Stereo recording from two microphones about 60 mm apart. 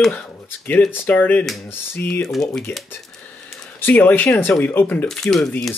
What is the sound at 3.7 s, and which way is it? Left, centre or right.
Speech, left.